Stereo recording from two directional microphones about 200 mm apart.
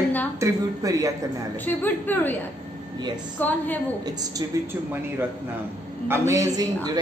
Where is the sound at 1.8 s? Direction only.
10° left (ahead or behind).